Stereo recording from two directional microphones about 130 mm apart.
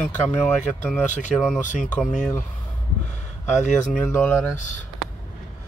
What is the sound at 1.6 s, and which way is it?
Speech, 75° left (ahead or behind).